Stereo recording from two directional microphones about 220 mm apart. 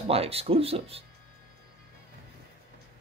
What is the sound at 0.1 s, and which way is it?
Speech, 25° right (ahead or behind).